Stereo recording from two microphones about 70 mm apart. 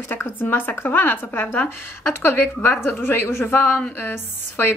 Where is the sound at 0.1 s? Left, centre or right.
Left.